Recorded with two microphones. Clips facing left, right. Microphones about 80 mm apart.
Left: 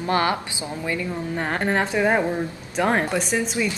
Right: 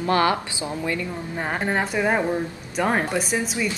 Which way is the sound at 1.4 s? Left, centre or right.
Centre.